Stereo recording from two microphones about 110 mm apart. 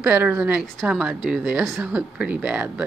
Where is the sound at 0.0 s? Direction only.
15° right (ahead or behind).